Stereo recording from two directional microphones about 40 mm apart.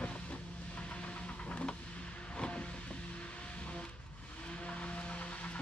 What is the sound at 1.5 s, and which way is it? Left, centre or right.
Vehicle, left.